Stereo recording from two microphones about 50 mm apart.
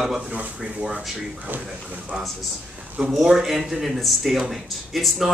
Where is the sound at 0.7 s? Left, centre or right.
Centre.